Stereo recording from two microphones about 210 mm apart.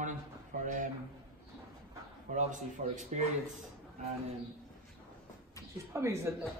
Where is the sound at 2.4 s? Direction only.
35° right (ahead or behind).